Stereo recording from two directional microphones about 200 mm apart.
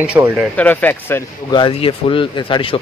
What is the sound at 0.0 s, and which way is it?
Speech, 5° right (ahead or behind).